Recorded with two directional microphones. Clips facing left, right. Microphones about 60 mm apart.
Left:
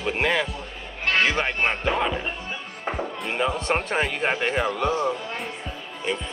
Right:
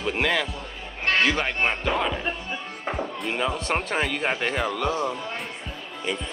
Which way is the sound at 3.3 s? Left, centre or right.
Left.